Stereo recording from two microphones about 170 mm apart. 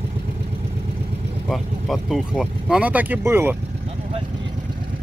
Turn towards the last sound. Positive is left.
turn(degrees=-15)  # may be behind; listen again after turning